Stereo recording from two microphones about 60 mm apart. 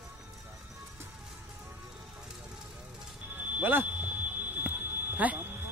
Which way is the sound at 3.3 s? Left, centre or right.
Right.